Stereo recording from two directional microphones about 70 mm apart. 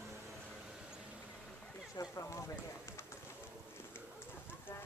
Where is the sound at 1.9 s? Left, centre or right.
Left.